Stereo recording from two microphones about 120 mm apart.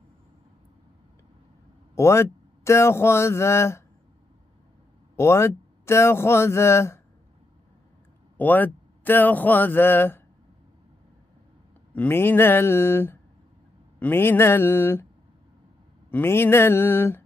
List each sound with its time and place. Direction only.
2.0 s speech: 25° left (ahead or behind)
5.1 s speech: 20° left (ahead or behind)
8.4 s speech: 15° left (ahead or behind)
11.9 s speech: 15° left (ahead or behind)
16.1 s speech: 20° left (ahead or behind)